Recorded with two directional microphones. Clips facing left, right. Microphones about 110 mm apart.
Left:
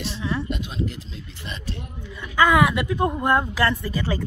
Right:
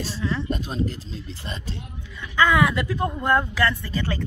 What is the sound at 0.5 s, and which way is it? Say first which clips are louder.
Speech: right 2 dB; 40° right (ahead or behind).